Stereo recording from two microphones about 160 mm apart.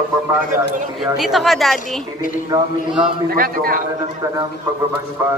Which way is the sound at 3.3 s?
65° right (ahead or behind).